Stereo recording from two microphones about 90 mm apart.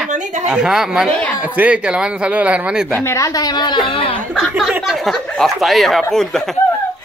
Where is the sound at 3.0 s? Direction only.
35° left (ahead or behind); by 3.8 s 50° left (ahead or behind).